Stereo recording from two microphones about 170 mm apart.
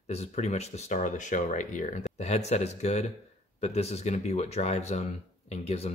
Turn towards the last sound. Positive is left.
turn(degrees=40)  # may be behind; listen again after turning